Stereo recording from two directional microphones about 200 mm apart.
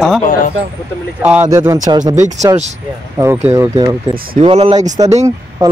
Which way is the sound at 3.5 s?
20° right (ahead or behind).